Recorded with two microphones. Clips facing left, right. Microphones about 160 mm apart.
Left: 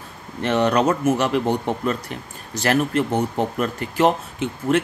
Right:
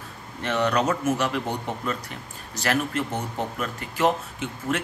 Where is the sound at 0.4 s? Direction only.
25° left (ahead or behind).